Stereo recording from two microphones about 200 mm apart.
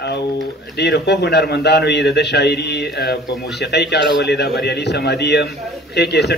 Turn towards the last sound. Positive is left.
turn(degrees=55)  # may be behind; listen again after turning